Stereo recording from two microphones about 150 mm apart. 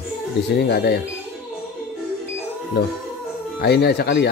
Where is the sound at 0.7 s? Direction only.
90° left.